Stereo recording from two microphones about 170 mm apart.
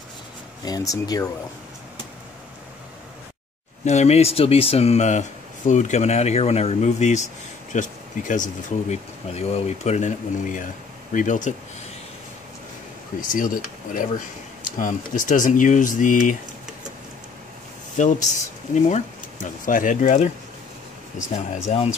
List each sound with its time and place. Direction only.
0.7 s speech: 25° left (ahead or behind)
3.8 s speech: 40° left (ahead or behind)
13.2 s speech: 55° left (ahead or behind)
17.9 s speech: 45° left (ahead or behind)
21.7 s speech: 45° left (ahead or behind)